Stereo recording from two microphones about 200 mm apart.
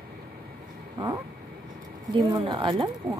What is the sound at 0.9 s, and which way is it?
Vehicle, 20° right (ahead or behind).